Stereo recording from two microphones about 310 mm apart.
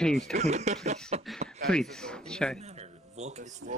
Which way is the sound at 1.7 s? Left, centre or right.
Centre.